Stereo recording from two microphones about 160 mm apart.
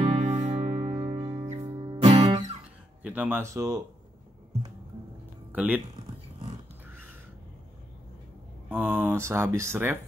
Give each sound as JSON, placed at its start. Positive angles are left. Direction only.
{"t": 0.1, "sound": "music", "side_deg": -45}
{"t": 1.7, "sound": "music", "side_deg": -30}
{"t": 3.0, "sound": "speech", "side_deg": -10}
{"t": 5.5, "sound": "speech", "side_deg": -10}
{"t": 8.6, "sound": "speech", "side_deg": -10}